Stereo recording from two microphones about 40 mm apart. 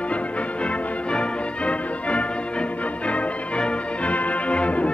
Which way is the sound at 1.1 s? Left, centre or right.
Left.